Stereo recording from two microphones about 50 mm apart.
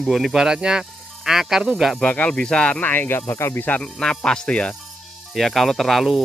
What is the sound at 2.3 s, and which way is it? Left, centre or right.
Speech, centre.